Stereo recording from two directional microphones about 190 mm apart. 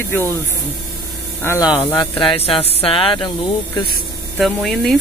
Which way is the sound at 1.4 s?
15° left (ahead or behind).